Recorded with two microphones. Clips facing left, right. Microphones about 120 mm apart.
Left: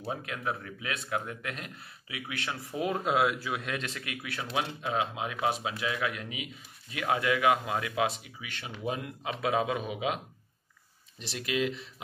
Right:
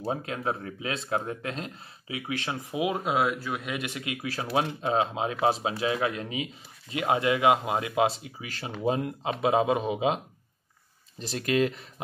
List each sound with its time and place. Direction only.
0.0 s speech: 30° right (ahead or behind)
11.1 s speech: 40° right (ahead or behind)